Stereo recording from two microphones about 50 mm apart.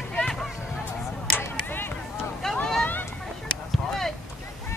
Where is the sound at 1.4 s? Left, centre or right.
Left.